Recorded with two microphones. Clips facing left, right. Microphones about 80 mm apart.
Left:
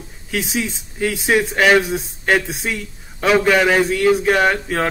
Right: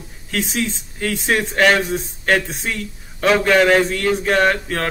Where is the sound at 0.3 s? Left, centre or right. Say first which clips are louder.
Even; centre.